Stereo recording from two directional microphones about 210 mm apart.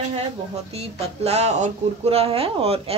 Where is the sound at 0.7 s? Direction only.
30° right (ahead or behind).